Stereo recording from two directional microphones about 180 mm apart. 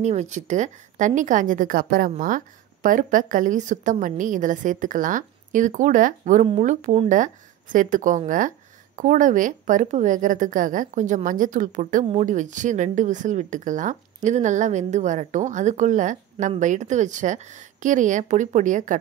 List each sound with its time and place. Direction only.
0.0 s speech: 40° right (ahead or behind)